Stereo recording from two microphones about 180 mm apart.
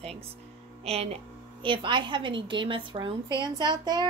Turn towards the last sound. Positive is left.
turn(degrees=-25)  # may be behind; listen again after turning